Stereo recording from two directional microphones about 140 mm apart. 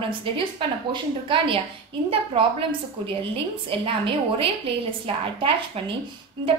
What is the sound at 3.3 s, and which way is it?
A woman's voice, 40° right (ahead or behind).